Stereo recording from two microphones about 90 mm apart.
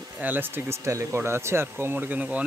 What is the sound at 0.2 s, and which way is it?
Speech, 20° right (ahead or behind).